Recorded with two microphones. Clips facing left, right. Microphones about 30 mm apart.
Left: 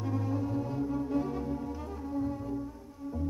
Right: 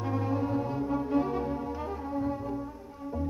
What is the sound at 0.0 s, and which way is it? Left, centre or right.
Music, right.